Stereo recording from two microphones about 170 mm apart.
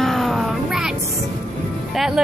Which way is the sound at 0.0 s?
Centre (ahead or behind).